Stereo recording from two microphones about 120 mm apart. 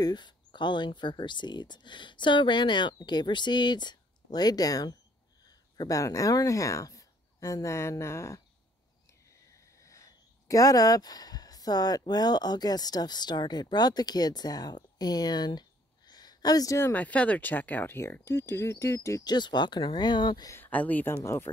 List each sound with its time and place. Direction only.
0.0 s speech: 40° left (ahead or behind); by 8.4 s 20° left (ahead or behind)
9.8 s speech: 25° left (ahead or behind)
16.1 s a sound: 35° left (ahead or behind)
16.9 s speech: 10° left (ahead or behind)
19.3 s speech: 40° left (ahead or behind)
20.5 s speech: 15° left (ahead or behind)